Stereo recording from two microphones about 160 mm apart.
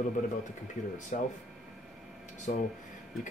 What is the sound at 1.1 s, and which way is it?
Speech, 55° left (ahead or behind).